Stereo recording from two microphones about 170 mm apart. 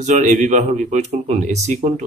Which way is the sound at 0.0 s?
45° right (ahead or behind).